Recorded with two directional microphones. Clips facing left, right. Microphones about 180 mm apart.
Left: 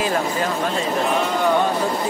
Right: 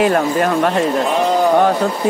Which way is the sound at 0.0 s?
60° right (ahead or behind).